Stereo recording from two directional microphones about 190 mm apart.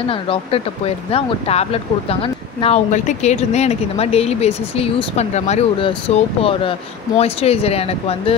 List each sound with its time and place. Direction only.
0.0 s speech: 30° left (ahead or behind)